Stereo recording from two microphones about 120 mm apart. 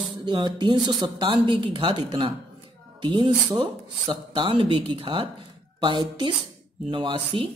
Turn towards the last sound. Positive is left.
turn(degrees=-45)  # may be behind; listen again after turning